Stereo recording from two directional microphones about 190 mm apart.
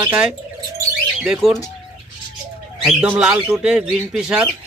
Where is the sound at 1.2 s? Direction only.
Centre (ahead or behind).